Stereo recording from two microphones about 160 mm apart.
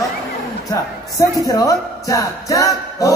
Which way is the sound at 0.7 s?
20° left (ahead or behind).